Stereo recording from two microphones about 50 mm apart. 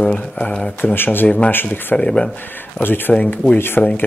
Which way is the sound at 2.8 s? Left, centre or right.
Left.